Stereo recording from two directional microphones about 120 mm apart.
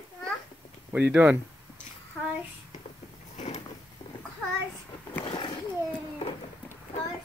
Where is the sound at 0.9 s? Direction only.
10° right (ahead or behind).